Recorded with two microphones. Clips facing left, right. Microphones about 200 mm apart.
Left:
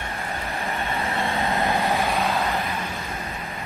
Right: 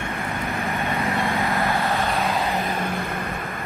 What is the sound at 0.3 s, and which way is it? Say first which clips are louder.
Vehicle: right 2 dB; 35° left (ahead or behind).